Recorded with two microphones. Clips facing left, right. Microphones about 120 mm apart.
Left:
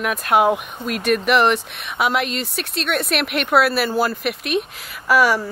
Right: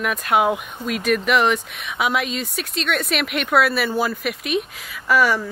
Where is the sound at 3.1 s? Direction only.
55° left (ahead or behind).